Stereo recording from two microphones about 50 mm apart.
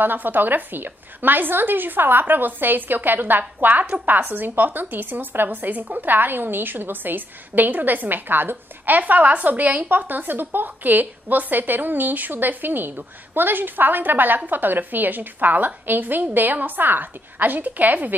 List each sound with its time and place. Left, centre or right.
0.0 s speech: right